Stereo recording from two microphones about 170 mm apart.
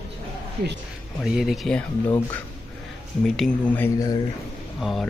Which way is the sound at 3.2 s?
5° left (ahead or behind).